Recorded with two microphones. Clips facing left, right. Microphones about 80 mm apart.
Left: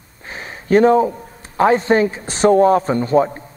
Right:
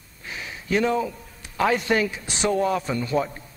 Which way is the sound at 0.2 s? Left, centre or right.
Left.